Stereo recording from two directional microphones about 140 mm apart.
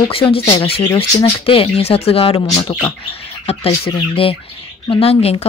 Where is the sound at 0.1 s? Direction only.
40° left (ahead or behind).